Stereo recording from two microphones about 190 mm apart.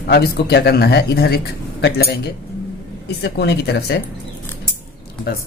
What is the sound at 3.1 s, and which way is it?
Speech, 60° left (ahead or behind).